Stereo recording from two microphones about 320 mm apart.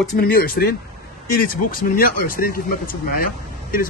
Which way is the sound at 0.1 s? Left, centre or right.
Left.